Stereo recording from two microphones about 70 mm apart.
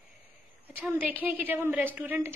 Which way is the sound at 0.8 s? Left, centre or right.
Right.